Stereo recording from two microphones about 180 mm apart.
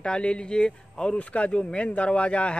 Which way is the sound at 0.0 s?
5° left (ahead or behind).